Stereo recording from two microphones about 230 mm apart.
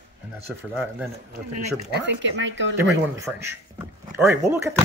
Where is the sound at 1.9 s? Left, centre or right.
Right.